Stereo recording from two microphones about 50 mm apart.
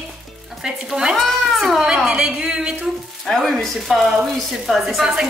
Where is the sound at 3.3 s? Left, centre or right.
Centre.